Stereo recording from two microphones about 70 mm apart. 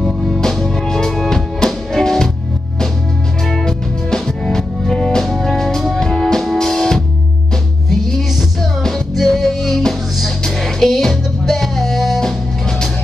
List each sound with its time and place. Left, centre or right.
0.0 s music: centre
3.4 s music: centre